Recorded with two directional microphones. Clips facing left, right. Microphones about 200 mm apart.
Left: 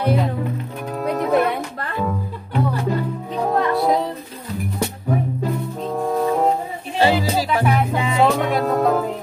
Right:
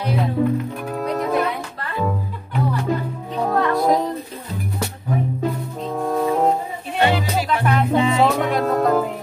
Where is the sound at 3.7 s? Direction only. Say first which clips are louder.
Right 2 dB; 5° left (ahead or behind).